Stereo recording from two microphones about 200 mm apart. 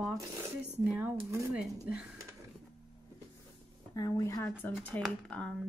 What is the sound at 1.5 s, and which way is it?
Speech, 5° right (ahead or behind).